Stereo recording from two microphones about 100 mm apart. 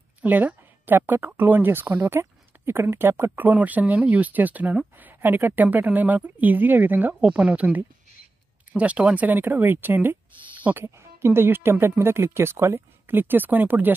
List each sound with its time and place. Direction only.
0.2 s speech: 15° right (ahead or behind)